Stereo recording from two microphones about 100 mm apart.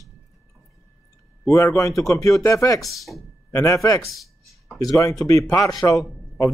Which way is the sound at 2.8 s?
Centre (ahead or behind).